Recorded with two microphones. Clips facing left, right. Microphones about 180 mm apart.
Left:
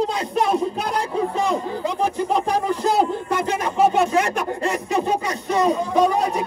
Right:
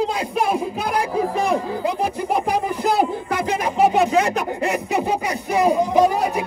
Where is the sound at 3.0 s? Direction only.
15° right (ahead or behind).